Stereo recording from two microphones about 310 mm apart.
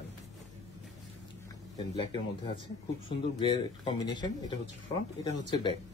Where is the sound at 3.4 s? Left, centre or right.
Centre.